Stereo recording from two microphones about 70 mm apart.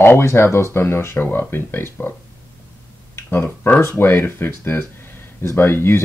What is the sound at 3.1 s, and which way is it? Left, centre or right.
Speech, left.